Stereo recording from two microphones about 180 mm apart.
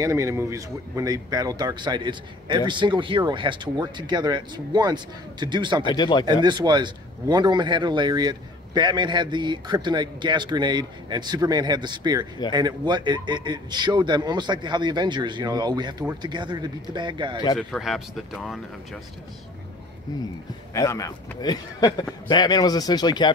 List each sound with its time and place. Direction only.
0.0 s a man's voice: 15° right (ahead or behind)
5.9 s speech: 25° left (ahead or behind)
6.2 s a man's voice: 25° right (ahead or behind)
17.6 s speech: centre (ahead or behind)
20.7 s speech: 15° left (ahead or behind)